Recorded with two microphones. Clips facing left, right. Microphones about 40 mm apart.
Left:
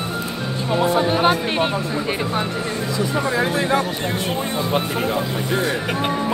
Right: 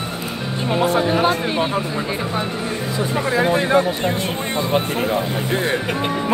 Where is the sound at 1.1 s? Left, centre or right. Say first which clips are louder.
Even; left.